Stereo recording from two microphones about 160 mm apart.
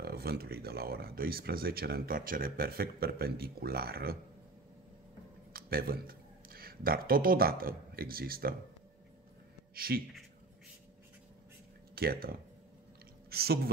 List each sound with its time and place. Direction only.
0.0 s speech: 80° right
5.5 s speech: 70° right (ahead or behind)
9.8 s speech: 70° right (ahead or behind)
11.9 s speech: 70° right (ahead or behind)